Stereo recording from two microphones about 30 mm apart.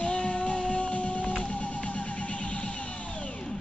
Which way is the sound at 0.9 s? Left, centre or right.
Left.